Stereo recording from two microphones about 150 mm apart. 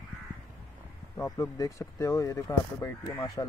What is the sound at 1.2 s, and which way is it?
Speech, 25° left (ahead or behind).